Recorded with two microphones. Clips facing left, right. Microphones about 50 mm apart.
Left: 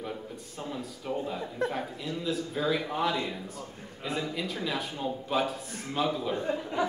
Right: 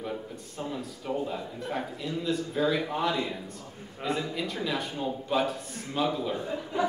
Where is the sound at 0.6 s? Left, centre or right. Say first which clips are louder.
Right 2 dB; centre.